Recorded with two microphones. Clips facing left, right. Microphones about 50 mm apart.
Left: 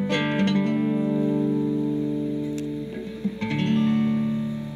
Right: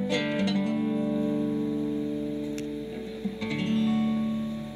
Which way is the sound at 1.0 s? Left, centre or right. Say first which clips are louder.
Left 4 dB; left.